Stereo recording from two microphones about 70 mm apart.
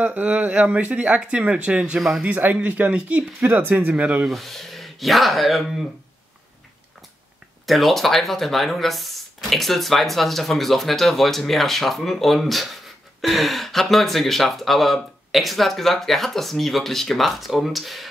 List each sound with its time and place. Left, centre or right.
0.0 s speech: right
2.0 s speech: centre
2.2 s speech: right
4.3 s speech: centre
7.6 s speech: centre